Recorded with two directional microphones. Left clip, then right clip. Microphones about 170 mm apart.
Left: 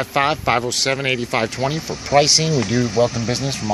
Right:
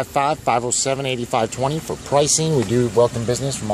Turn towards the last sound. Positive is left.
turn(degrees=-5)  # may be behind; listen again after turning